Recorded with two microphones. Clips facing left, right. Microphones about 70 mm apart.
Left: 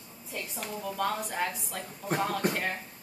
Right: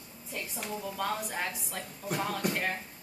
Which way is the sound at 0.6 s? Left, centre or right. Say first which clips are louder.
Left 3 dB; centre.